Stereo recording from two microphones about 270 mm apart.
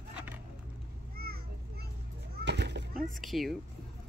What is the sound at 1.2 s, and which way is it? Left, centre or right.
Children playing, right.